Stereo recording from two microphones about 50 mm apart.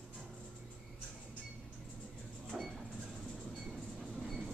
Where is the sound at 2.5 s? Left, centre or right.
Centre.